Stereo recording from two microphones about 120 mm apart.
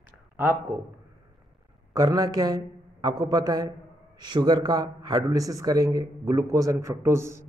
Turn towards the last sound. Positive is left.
turn(degrees=-20)  # may be behind; listen again after turning